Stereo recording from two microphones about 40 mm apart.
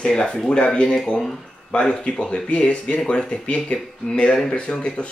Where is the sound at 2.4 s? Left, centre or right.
Left.